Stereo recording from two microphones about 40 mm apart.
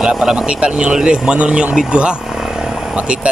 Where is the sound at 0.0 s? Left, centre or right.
Centre.